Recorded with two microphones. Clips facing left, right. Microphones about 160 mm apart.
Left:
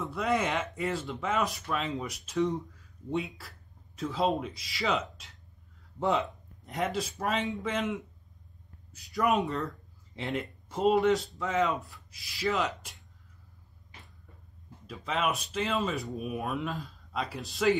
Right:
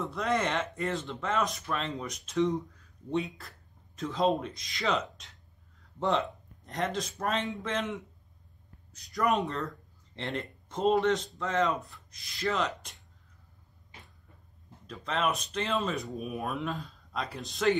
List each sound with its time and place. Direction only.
0.0 s speech: centre (ahead or behind)
9.1 s speech: centre (ahead or behind)
14.9 s speech: 5° left (ahead or behind)